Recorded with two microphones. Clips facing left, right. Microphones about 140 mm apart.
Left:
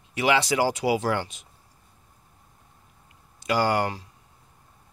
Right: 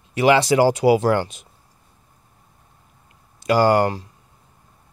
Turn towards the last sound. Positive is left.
turn(degrees=-40)  # may be behind; listen again after turning